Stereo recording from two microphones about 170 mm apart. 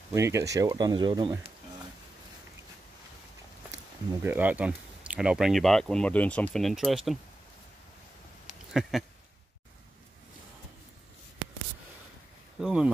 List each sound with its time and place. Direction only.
0.1 s speech: 15° right (ahead or behind)
4.2 s speech: 10° right (ahead or behind)
8.9 s speech: centre (ahead or behind)
12.5 s speech: 5° right (ahead or behind)